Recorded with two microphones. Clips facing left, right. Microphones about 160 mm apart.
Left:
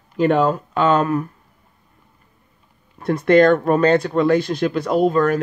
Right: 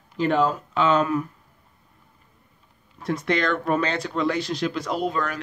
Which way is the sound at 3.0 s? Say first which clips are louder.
Left 11 dB; 55° left (ahead or behind).